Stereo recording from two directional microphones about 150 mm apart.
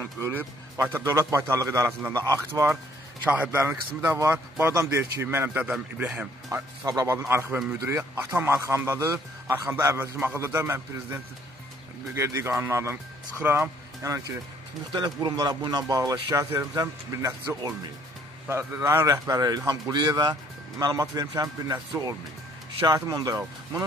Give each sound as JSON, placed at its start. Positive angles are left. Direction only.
{"t": 0.2, "sound": "a man's voice", "side_deg": -15}
{"t": 12.2, "sound": "a man's voice", "side_deg": -20}
{"t": 14.9, "sound": "speech", "side_deg": -30}